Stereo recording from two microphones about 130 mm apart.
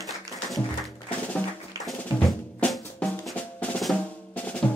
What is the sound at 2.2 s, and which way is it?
Drum, 5° left (ahead or behind).